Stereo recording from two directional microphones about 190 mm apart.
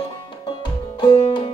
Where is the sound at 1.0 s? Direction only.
25° left (ahead or behind).